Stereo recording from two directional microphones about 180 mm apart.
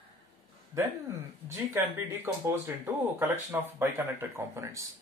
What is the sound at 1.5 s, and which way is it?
Speech, 15° right (ahead or behind).